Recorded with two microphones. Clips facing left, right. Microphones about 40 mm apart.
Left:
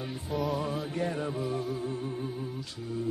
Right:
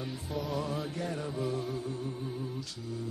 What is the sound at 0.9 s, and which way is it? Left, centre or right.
Music, left.